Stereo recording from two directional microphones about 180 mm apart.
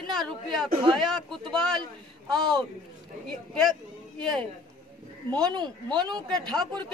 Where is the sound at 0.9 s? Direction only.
Centre (ahead or behind).